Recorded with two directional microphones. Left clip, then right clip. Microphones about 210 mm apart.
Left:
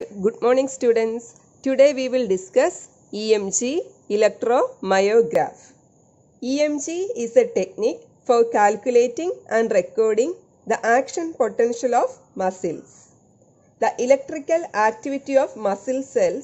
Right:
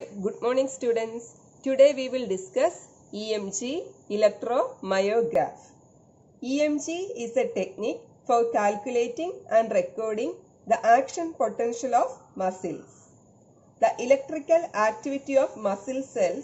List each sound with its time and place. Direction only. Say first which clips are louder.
0.2 s a woman's voice: left 7 dB; 45° left (ahead or behind)
6.4 s a woman's voice: left 4 dB; 50° left (ahead or behind)
13.8 s a woman's voice: left 4 dB; 55° left (ahead or behind)